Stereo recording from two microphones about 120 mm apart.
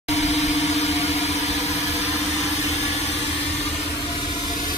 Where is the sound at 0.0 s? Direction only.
70° left (ahead or behind).